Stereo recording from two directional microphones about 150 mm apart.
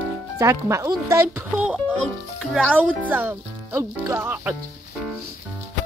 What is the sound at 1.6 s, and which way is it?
Speech, 10° right (ahead or behind).